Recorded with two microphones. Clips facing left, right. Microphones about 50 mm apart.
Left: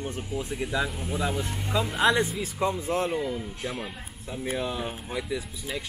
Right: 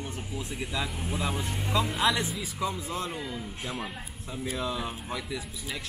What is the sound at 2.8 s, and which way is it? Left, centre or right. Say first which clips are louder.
Speech: left 7 dB; left.